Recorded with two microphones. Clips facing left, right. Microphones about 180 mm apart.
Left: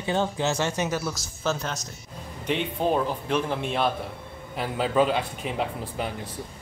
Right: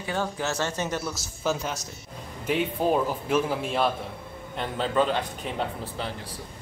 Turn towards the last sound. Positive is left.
turn(degrees=15)  # may be behind; listen again after turning